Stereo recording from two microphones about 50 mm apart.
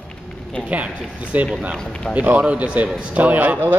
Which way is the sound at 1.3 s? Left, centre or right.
Right.